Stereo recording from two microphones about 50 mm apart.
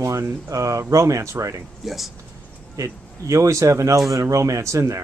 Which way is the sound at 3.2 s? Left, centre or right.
Right.